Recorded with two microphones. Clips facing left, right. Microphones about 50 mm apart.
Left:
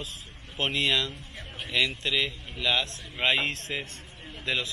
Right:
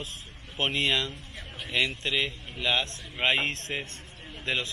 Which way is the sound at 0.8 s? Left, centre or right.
Right.